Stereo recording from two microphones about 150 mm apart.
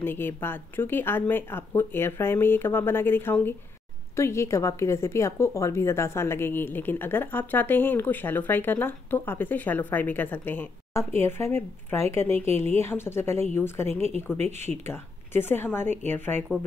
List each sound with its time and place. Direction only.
0.0 s a woman's voice: 15° left (ahead or behind)
14.4 s speech: 50° right (ahead or behind)
14.9 s a woman's voice: 15° left (ahead or behind)